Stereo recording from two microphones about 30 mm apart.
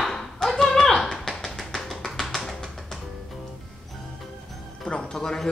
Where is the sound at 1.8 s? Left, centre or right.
Centre.